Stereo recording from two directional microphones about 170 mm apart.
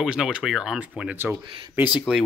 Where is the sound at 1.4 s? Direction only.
30° right (ahead or behind).